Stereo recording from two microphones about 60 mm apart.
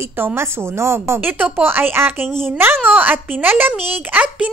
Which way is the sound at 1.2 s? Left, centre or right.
Right.